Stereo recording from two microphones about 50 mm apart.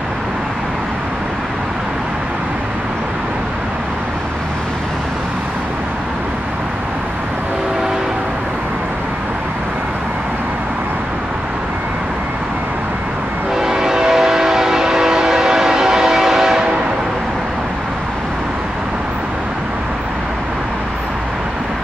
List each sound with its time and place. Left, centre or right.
13.6 s train: centre